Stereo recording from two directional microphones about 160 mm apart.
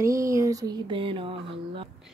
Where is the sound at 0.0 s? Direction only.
20° right (ahead or behind).